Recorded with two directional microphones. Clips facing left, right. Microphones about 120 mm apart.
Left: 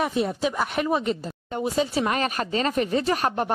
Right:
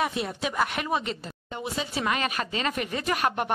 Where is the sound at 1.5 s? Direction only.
40° left (ahead or behind).